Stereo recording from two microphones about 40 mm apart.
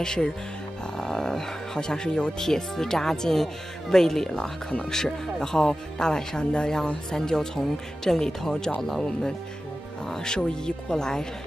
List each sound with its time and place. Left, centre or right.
0.0 s speech: centre
10.0 s speech: centre